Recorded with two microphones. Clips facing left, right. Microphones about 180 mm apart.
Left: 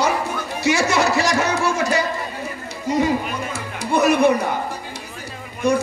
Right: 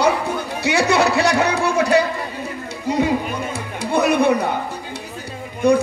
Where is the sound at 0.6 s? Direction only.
60° right (ahead or behind).